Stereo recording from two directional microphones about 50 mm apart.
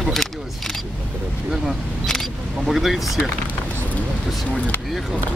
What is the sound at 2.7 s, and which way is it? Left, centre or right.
Speech, centre.